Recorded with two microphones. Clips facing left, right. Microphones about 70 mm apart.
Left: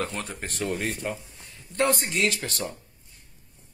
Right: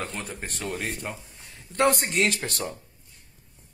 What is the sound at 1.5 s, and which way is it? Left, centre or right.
A man's voice, right.